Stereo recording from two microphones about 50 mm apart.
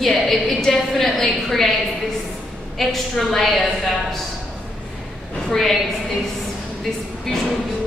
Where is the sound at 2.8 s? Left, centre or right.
Centre.